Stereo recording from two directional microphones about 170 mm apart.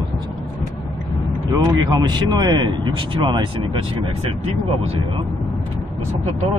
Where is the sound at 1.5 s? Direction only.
25° right (ahead or behind).